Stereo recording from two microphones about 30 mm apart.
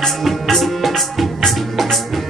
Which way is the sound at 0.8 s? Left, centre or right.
Centre.